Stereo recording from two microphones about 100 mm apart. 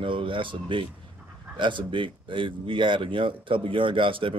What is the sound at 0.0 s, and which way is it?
Speech, 60° right (ahead or behind).